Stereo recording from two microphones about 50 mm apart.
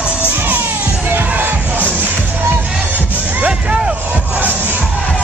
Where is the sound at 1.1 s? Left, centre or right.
Right.